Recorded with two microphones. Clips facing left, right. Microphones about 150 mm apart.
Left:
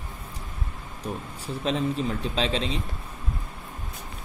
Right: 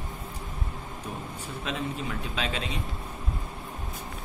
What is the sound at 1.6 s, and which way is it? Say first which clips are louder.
Speech: left 7 dB; 30° left (ahead or behind).